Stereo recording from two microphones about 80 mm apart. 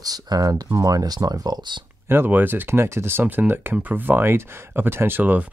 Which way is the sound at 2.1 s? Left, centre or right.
Right.